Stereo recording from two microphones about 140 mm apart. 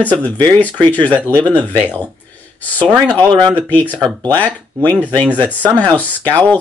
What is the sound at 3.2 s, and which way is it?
Speech, 30° right (ahead or behind).